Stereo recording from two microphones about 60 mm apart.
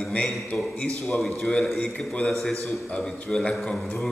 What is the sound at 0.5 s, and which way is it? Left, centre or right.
Speech, left.